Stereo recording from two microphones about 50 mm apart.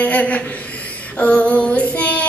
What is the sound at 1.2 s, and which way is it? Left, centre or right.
Female singing, left.